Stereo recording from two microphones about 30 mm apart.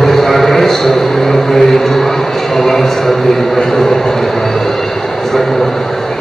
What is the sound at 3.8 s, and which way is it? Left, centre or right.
Vehicle, centre.